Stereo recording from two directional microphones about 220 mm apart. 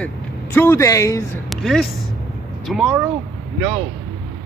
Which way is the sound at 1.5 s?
Centre (ahead or behind).